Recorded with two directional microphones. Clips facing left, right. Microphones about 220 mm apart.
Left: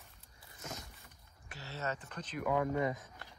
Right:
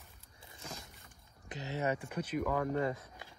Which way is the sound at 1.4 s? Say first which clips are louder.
Right 6 dB; 15° right (ahead or behind).